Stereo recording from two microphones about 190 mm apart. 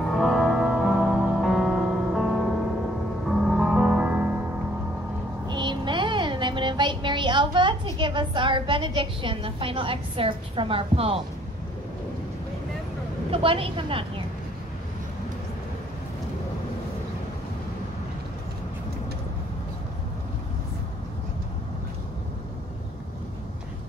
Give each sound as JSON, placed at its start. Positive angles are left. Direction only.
{"t": 0.0, "sound": "music", "side_deg": 0}
{"t": 5.5, "sound": "music", "side_deg": -25}
{"t": 13.3, "sound": "a woman's voice", "side_deg": -30}